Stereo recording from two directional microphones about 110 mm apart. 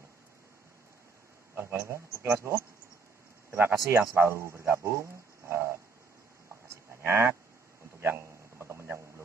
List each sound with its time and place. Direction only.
1.5 s a man's voice: 20° right (ahead or behind)
3.5 s speech: 20° right (ahead or behind)
6.7 s cattle: 20° right (ahead or behind)
8.0 s a sound: 20° right (ahead or behind)